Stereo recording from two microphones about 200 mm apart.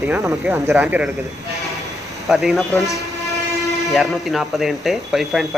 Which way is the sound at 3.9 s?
Centre (ahead or behind).